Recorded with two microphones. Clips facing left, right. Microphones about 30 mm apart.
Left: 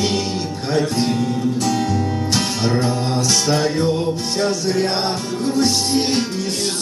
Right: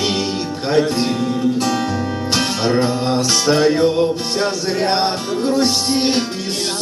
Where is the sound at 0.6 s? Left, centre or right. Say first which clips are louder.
Right 3 dB; centre.